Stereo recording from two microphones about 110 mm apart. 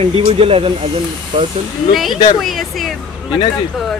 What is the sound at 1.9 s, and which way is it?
Speech, centre (ahead or behind).